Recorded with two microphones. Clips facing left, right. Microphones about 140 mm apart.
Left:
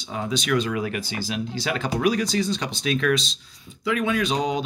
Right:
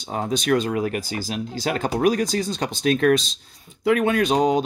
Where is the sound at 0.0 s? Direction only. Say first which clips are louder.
Right 3 dB; 50° right (ahead or behind).